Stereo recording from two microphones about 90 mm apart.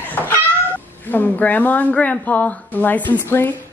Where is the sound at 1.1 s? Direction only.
20° left (ahead or behind).